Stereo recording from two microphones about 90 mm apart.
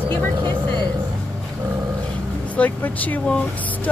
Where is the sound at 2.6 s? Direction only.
20° left (ahead or behind).